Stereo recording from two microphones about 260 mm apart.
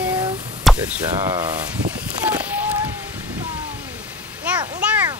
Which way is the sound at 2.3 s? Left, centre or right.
Centre.